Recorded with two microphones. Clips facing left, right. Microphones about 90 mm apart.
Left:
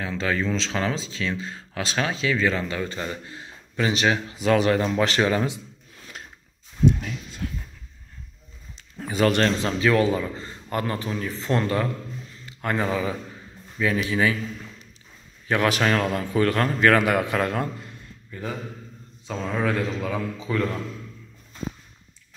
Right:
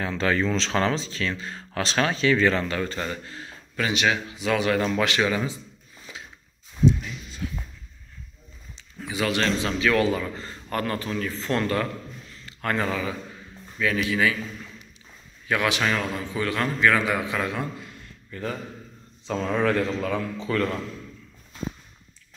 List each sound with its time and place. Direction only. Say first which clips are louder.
0.0 s speech: right 2 dB; 5° left (ahead or behind); by 5.4 s 35° left (ahead or behind)
6.9 s speech: even; 60° left (ahead or behind)
8.9 s speech: left 5 dB; 45° left (ahead or behind)
9.7 s a man's voice: left 2 dB; 25° left (ahead or behind)
15.4 s a man's voice: left 2 dB; 35° left (ahead or behind)
18.3 s a man's voice: right 1 dB; 10° left (ahead or behind)